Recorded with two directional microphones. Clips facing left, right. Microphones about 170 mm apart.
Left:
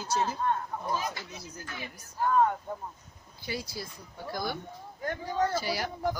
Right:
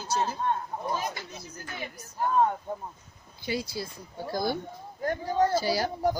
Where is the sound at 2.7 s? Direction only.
15° right (ahead or behind).